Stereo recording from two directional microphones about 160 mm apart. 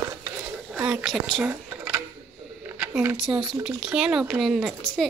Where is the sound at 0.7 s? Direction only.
5° right (ahead or behind).